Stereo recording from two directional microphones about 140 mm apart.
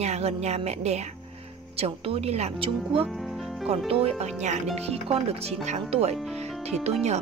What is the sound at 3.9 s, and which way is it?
Speech, 45° right (ahead or behind).